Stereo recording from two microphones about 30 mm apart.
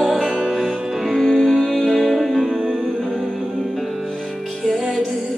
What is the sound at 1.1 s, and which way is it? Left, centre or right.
Music, centre.